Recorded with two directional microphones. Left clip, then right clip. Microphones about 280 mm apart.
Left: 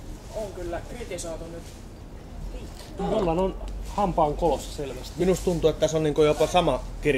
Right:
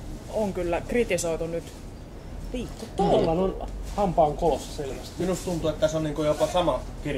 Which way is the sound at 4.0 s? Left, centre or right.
Centre.